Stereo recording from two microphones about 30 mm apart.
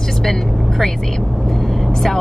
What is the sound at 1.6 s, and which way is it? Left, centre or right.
Vehicle, centre.